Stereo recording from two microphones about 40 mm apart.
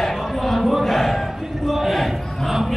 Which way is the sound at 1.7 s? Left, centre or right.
Centre.